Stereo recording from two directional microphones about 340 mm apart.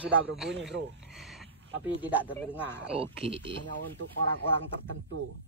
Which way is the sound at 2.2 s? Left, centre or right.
Centre.